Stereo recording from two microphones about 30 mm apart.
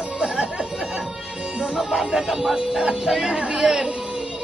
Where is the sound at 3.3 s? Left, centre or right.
Right.